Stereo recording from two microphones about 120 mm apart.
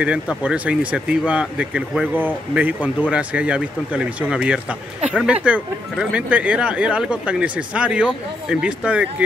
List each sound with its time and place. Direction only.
0.0 s speech: 10° right (ahead or behind)